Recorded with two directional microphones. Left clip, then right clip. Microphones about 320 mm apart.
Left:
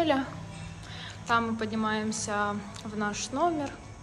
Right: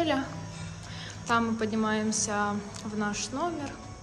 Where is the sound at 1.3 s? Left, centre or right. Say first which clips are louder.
Even; centre.